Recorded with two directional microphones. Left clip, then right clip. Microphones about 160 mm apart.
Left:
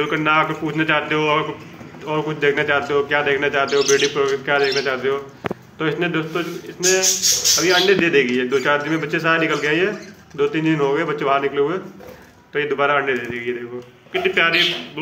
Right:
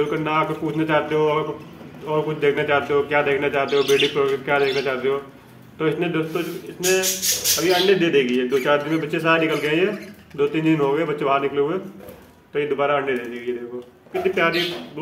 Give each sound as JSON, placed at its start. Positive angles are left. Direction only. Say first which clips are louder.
{"t": 0.0, "sound": "speech", "louder": "left 4 dB", "side_deg": -10}
{"t": 7.6, "sound": "a man's voice", "louder": "left 1 dB", "side_deg": -10}